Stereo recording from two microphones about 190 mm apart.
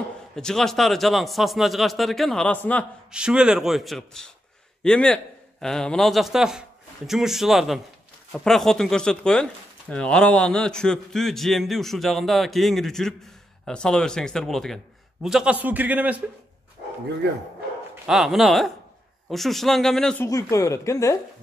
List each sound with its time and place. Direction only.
0.4 s speech: 5° left (ahead or behind)
3.1 s a man's voice: 5° right (ahead or behind)
18.0 s speech: centre (ahead or behind)
20.2 s a woman's voice: 20° left (ahead or behind)